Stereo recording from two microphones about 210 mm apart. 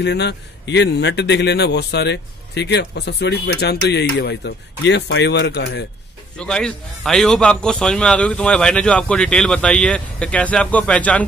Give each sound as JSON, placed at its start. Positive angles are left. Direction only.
{"t": 0.0, "sound": "speech", "side_deg": 55}
{"t": 6.3, "sound": "a man's voice", "side_deg": 5}